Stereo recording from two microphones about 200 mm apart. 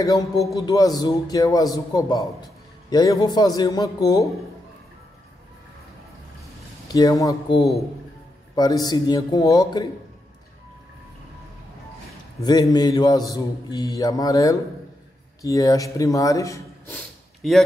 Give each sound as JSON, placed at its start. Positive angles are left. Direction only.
{"t": 0.6, "sound": "a man's voice", "side_deg": 20}
{"t": 6.9, "sound": "a man's voice", "side_deg": 20}
{"t": 12.4, "sound": "a man's voice", "side_deg": 20}
{"t": 17.4, "sound": "speech", "side_deg": 0}